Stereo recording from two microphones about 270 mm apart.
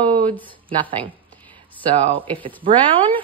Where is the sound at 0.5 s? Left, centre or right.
Centre.